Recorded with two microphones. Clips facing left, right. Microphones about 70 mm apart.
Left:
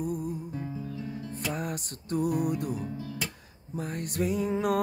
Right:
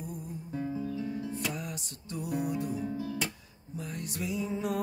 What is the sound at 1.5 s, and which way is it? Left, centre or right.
Music, left.